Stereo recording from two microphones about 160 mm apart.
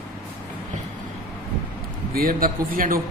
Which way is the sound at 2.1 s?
65° right (ahead or behind).